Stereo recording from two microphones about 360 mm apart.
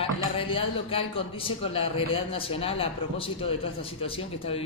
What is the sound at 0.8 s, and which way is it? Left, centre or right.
A man's voice, centre.